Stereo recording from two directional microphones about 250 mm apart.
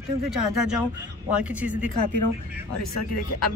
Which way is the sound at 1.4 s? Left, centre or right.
Centre.